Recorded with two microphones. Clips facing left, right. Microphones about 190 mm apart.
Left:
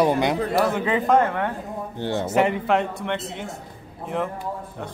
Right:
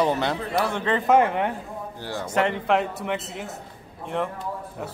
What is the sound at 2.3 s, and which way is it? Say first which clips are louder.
A man's voice: left 1 dB; 5° left (ahead or behind).